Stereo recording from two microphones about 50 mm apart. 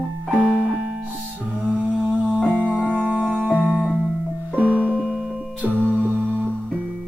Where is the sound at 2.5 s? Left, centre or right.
Right.